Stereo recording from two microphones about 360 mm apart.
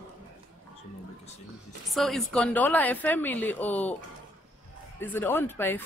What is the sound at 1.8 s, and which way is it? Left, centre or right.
Speech, centre.